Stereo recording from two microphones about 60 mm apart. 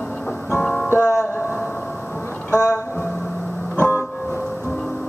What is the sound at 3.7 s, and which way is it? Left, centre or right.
Music, left.